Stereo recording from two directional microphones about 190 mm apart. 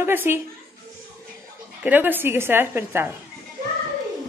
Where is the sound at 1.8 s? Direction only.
10° right (ahead or behind).